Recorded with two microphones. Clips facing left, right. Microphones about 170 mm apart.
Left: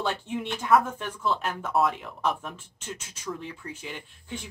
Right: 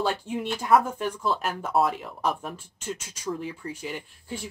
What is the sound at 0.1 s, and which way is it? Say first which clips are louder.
Speech: right 2 dB; 10° right (ahead or behind).